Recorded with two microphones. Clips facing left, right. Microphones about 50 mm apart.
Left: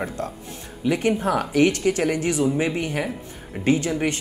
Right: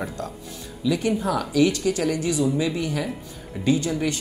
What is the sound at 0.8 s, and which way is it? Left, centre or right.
Speech, left.